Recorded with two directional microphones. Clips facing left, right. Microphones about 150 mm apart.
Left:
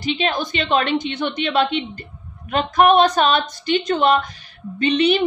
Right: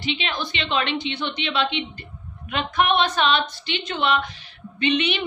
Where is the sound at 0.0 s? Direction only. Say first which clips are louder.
Left 6 dB; 40° left (ahead or behind).